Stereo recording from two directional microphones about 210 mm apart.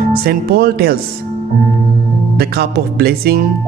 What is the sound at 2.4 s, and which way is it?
Speech, 50° right (ahead or behind).